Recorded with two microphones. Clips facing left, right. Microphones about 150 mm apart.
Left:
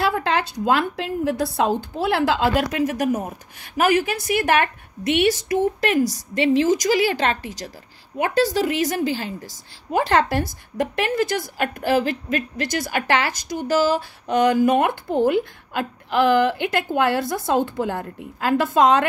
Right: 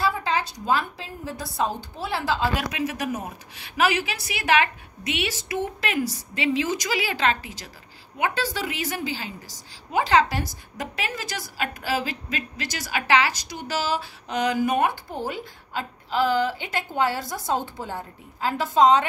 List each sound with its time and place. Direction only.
0.0 s a woman's voice: 65° left (ahead or behind)
2.7 s a woman's voice: 45° left (ahead or behind)